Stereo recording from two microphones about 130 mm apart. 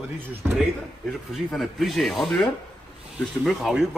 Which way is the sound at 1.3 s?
Centre (ahead or behind).